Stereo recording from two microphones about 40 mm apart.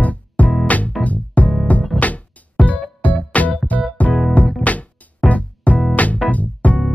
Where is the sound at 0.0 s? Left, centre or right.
Left.